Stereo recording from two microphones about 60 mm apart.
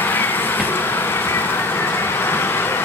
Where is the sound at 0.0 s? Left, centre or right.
Left.